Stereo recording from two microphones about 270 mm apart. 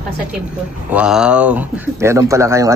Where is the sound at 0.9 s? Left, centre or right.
Centre.